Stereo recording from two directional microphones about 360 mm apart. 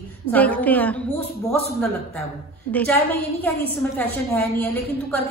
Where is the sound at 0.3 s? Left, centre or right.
Centre.